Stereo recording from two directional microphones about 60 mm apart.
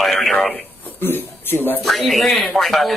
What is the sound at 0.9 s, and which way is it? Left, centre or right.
Speech, left.